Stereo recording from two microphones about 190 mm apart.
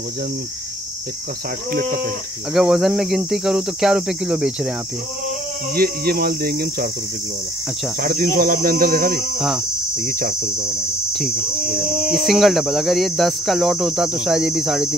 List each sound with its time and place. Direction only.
1.7 s cricket: 50° right (ahead or behind)
2.5 s speech: centre (ahead or behind)
5.8 s cricket: 50° right (ahead or behind)
8.0 s cricket: 45° right (ahead or behind)
11.1 s speech: 5° right (ahead or behind)
11.6 s cricket: 45° right (ahead or behind)
12.2 s speech: centre (ahead or behind)